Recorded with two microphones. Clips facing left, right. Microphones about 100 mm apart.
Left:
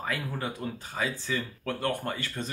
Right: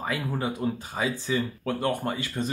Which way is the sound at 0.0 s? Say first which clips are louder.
Right 4 dB; 15° right (ahead or behind).